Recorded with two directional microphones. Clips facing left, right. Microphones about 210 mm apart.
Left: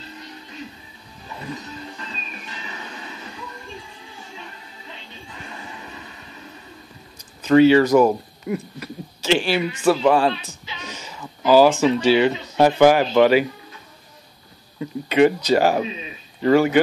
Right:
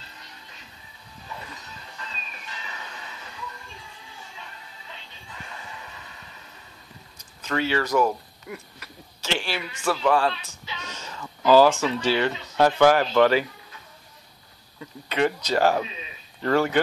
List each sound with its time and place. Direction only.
7.4 s speech: 15° left (ahead or behind)
14.8 s speech: 15° left (ahead or behind)